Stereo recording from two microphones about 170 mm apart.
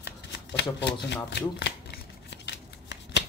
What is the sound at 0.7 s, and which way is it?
Shuffling cards, 90° left.